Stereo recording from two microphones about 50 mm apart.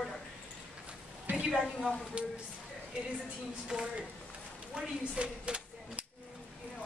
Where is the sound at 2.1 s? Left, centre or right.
Right.